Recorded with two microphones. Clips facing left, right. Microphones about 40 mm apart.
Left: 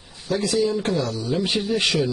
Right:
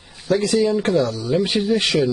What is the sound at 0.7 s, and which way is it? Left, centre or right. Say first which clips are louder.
Speech: right 5 dB; centre.